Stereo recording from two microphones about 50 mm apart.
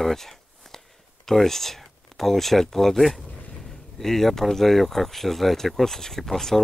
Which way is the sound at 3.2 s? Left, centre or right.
Left.